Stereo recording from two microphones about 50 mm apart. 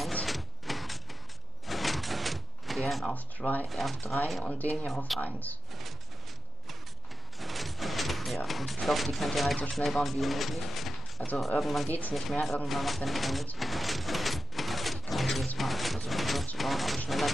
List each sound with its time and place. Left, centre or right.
0.2 s vehicle: centre
1.7 s door: centre
3.2 s speech: left
3.6 s speech: centre
5.2 s speech: left
7.3 s a sound: centre
8.5 s speech: centre
13.6 s a sound: centre